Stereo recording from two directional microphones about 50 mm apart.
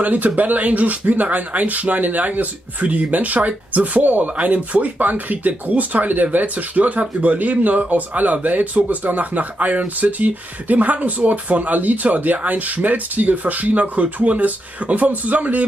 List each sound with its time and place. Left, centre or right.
0.0 s speech: right